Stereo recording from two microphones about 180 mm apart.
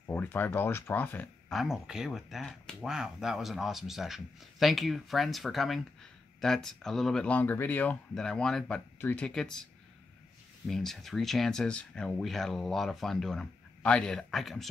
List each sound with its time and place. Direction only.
0.0 s speech: 10° left (ahead or behind)
10.7 s speech: centre (ahead or behind)